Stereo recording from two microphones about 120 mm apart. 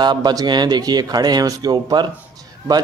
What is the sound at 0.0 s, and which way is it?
Speech, 35° right (ahead or behind).